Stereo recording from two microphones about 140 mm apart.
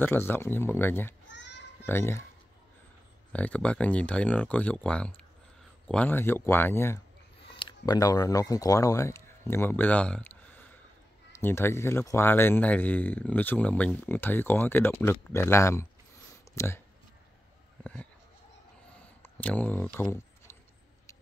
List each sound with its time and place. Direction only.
0.0 s speech: 15° left (ahead or behind)
3.3 s speech: 10° left (ahead or behind)
7.5 s speech: 35° left (ahead or behind)
18.9 s a sound: 10° left (ahead or behind)